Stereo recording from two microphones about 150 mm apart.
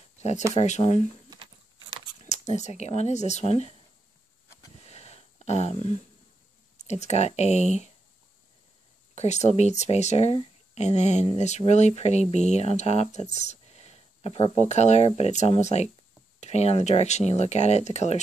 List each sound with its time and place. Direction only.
0.6 s speech: 45° left (ahead or behind)
2.2 s speech: 50° left (ahead or behind)
4.8 s a sound: 45° left (ahead or behind)
6.9 s speech: 50° left (ahead or behind)
9.1 s speech: 50° left (ahead or behind)
13.3 s a sound: 50° left (ahead or behind)
14.7 s speech: 50° left (ahead or behind)